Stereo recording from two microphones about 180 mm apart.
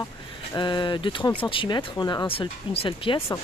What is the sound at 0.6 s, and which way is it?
Speech, 25° left (ahead or behind).